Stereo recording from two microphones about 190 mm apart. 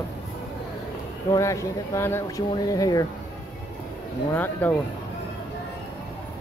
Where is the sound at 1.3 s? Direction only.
15° left (ahead or behind).